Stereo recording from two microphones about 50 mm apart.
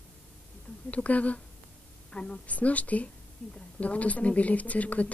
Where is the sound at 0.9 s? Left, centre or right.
Left.